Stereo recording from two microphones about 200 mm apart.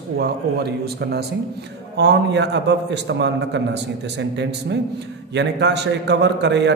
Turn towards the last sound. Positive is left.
turn(degrees=-60)  # may be behind; listen again after turning